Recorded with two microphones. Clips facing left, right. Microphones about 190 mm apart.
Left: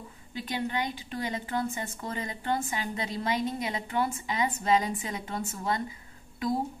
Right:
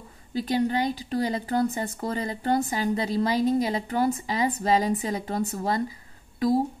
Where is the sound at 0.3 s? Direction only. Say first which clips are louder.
Right 8 dB; 35° right (ahead or behind).